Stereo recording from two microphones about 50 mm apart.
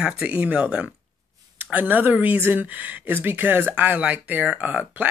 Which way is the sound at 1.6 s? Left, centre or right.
Right.